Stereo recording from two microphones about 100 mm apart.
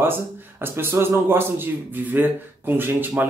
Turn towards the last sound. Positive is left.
turn(degrees=-20)  # may be behind; listen again after turning